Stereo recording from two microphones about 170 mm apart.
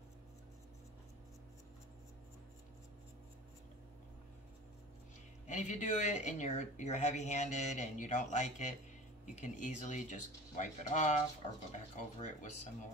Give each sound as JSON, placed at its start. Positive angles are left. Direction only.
{"t": 5.5, "sound": "speech", "side_deg": 45}